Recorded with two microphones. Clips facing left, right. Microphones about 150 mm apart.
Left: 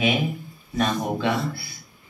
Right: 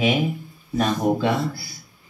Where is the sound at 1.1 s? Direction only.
35° right (ahead or behind).